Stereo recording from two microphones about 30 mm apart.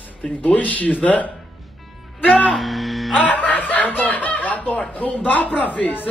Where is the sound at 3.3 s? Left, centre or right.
Left.